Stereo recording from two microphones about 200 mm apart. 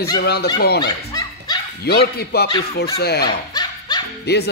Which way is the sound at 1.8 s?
55° left (ahead or behind).